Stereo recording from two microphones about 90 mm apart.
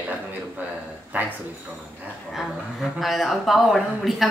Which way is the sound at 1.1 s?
15° right (ahead or behind).